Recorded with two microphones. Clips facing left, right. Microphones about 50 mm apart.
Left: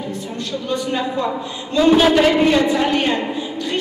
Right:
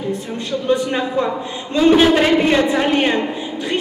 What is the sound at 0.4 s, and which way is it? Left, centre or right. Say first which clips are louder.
A man's voice: right 5 dB; right.